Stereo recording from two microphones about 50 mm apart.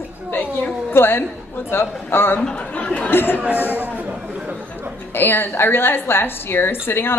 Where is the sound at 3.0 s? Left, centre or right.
Left.